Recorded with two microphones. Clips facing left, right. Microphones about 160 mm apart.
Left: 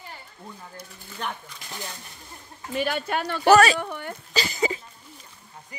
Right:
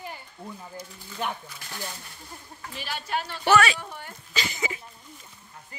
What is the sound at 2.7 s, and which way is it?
Speech, 55° left (ahead or behind).